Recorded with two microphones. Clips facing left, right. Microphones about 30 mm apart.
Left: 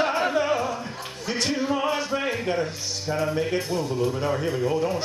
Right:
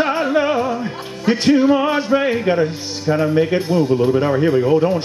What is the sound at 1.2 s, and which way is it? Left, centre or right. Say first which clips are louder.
A man's voice: right 12 dB; right.